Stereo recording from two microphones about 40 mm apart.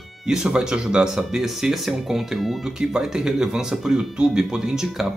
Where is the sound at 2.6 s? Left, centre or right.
Centre.